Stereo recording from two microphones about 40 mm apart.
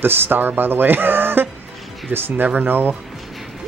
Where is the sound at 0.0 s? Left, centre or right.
Right.